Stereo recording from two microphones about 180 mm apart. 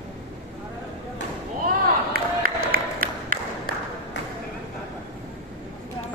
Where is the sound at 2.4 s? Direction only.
55° right (ahead or behind).